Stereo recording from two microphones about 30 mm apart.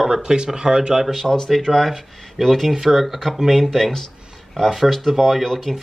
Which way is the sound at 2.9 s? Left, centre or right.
Centre.